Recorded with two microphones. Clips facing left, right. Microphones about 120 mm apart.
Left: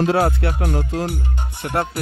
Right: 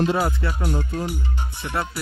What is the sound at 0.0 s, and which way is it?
Music, 80° left.